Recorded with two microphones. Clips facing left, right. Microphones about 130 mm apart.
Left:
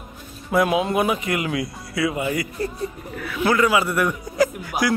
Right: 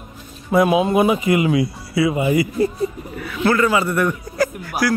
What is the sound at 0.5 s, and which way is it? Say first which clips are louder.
A man's voice: right 4 dB; centre (ahead or behind).